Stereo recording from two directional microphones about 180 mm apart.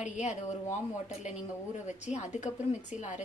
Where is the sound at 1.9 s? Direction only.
40° left (ahead or behind).